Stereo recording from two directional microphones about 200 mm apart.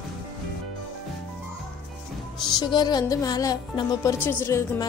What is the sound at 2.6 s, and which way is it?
Speech, 20° left (ahead or behind).